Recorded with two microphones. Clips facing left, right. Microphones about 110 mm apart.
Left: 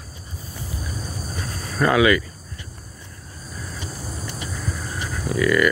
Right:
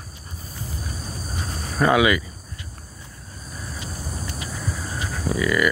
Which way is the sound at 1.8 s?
15° right (ahead or behind).